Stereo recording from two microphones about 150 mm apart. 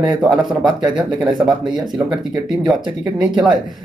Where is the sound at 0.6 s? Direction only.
30° right (ahead or behind).